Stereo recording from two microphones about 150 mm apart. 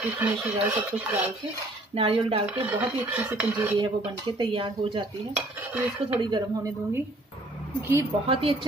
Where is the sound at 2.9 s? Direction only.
10° right (ahead or behind).